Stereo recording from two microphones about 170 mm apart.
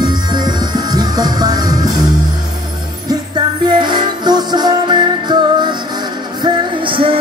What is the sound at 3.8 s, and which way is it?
Music, 25° right (ahead or behind).